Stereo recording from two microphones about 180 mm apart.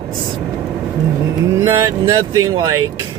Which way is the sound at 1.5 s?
15° right (ahead or behind).